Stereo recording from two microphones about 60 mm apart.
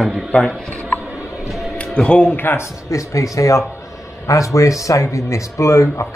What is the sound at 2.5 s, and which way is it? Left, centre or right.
Speech, left.